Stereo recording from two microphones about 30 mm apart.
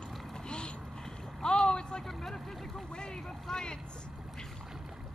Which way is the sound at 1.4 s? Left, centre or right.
Left.